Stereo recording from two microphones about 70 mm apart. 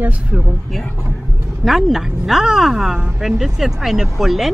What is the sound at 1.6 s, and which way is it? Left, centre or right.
A woman's voice, centre.